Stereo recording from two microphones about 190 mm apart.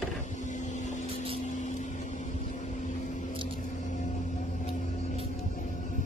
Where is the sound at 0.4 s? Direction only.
40° left (ahead or behind).